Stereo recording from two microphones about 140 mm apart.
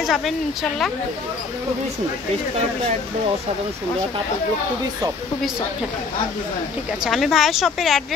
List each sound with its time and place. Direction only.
0.0 s a woman's voice: centre (ahead or behind)
7.1 s a woman's voice: centre (ahead or behind)